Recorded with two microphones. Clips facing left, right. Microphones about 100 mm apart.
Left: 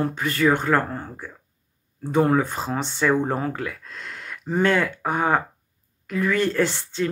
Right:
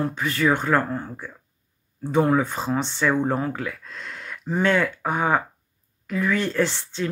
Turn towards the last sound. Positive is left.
turn(degrees=45)  # may be behind; listen again after turning